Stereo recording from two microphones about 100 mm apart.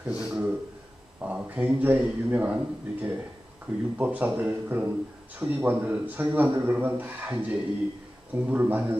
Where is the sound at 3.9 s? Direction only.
15° right (ahead or behind).